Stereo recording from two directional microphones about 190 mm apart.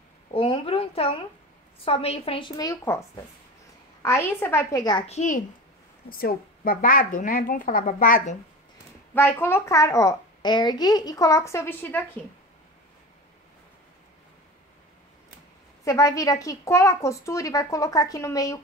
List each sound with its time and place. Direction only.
0.3 s a sound: 30° left (ahead or behind)
1.8 s a woman's voice: 30° left (ahead or behind)
6.0 s a woman's voice: 50° left (ahead or behind)
9.1 s a child's voice: 10° left (ahead or behind)
15.8 s a child's voice: 15° left (ahead or behind)